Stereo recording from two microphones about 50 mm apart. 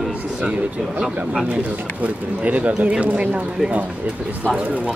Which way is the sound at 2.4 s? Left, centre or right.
Right.